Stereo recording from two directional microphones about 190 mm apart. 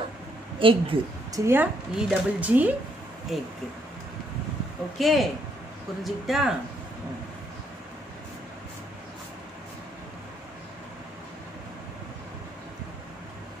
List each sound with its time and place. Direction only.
0.6 s a woman's voice: 25° right (ahead or behind)
1.4 s a woman's voice: 10° right (ahead or behind)
4.9 s speech: centre (ahead or behind)